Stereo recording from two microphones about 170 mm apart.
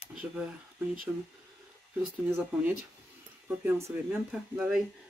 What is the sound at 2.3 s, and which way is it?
Speech, 10° right (ahead or behind).